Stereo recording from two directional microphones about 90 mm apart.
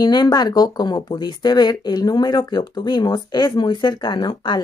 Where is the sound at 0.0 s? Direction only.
55° left (ahead or behind).